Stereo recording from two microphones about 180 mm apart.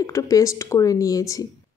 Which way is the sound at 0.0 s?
15° left (ahead or behind).